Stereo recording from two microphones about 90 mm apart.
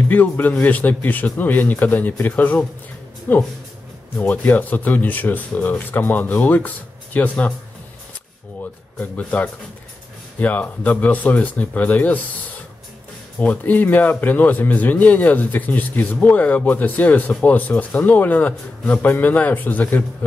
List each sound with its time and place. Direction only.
0.1 s speech: 20° left (ahead or behind)
9.0 s speech: 15° left (ahead or behind)